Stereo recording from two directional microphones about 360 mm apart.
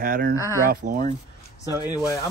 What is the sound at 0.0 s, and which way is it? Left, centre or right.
Speech, right.